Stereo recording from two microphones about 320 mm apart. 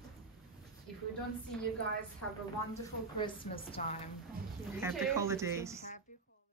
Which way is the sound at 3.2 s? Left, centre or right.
Centre.